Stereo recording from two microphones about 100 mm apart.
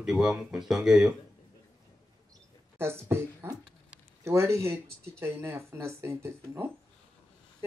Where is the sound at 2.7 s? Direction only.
25° right (ahead or behind).